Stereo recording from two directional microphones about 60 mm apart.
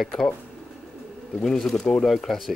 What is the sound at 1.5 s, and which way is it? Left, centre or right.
Speech, centre.